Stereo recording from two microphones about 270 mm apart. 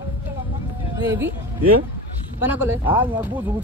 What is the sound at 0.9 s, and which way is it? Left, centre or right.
Speech, centre.